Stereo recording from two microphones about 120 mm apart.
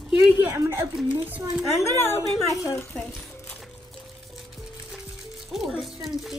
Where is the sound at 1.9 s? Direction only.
20° left (ahead or behind).